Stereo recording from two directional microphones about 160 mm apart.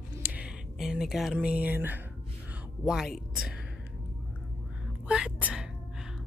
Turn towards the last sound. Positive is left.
turn(degrees=-10)  # may be behind; listen again after turning